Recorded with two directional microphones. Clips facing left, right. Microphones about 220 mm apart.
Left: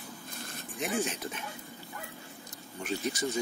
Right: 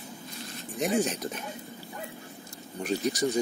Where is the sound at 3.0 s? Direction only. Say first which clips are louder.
Right 6 dB; 15° right (ahead or behind).